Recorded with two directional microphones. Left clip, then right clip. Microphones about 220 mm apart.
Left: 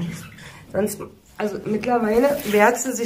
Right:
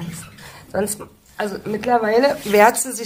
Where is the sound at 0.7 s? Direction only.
30° right (ahead or behind).